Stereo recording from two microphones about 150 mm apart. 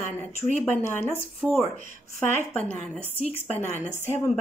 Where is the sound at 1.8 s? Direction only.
65° right (ahead or behind).